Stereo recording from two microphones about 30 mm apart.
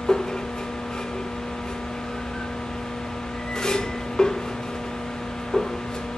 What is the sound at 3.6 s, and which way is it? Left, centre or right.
Music, left.